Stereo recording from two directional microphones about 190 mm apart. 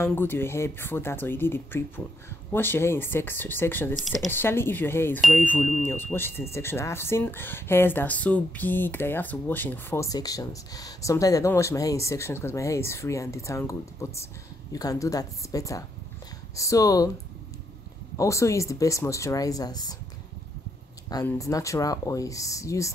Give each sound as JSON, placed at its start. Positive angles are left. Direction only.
{"t": 0.0, "sound": "a woman's voice", "side_deg": 10}
{"t": 3.9, "sound": "speech", "side_deg": 0}
{"t": 4.3, "sound": "a woman's voice", "side_deg": 10}
{"t": 18.1, "sound": "a woman's voice", "side_deg": 15}
{"t": 21.3, "sound": "a woman's voice", "side_deg": 15}